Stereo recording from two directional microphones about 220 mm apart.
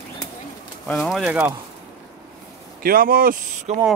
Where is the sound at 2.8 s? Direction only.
40° right (ahead or behind).